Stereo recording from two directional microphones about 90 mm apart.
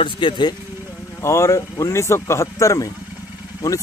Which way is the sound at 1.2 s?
35° left (ahead or behind).